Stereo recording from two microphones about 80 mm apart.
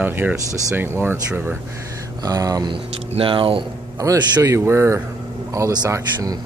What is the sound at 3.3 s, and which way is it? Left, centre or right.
Speech, right.